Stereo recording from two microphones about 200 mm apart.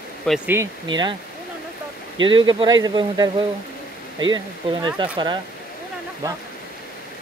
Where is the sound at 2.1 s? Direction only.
25° right (ahead or behind).